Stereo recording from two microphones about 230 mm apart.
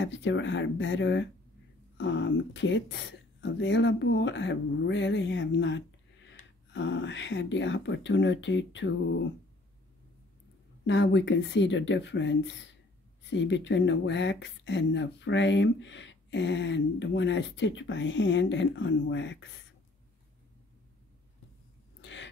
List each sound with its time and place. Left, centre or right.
0.0 s speech: left
10.9 s speech: left
22.0 s a sound: left